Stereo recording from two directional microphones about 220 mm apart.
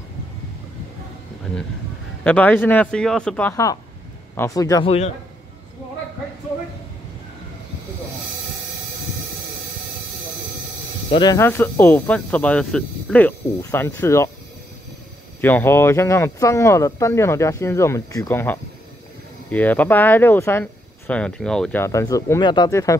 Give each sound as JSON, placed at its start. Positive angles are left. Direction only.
{"t": 2.2, "sound": "speech", "side_deg": 5}
{"t": 11.1, "sound": "speech", "side_deg": 25}
{"t": 11.3, "sound": "speech", "side_deg": 10}
{"t": 15.4, "sound": "speech", "side_deg": 10}